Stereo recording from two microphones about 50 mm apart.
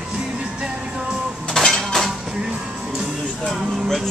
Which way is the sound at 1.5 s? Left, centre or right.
Centre.